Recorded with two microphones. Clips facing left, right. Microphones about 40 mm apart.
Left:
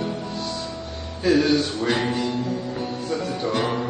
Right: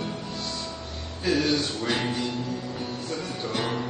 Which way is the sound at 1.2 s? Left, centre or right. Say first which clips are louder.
Left 6 dB; centre.